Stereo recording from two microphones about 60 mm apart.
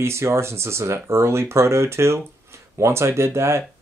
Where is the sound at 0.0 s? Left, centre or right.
Right.